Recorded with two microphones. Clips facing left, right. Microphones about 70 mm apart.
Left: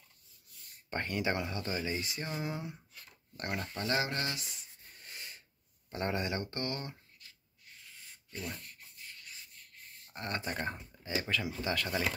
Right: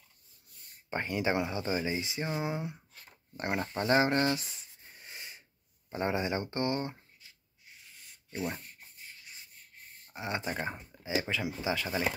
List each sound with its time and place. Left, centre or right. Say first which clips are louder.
0.8 s speech: right 3 dB; centre; by 4.5 s right
4.9 s snort: right 2 dB; centre
5.9 s speech: right 3 dB; centre
8.3 s speech: right 6 dB; right
10.1 s speech: right 2 dB; centre